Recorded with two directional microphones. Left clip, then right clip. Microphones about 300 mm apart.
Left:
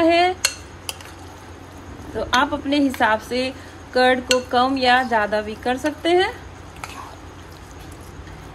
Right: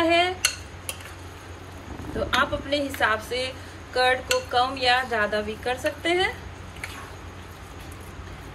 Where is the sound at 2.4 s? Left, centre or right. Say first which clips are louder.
Left 5 dB; left.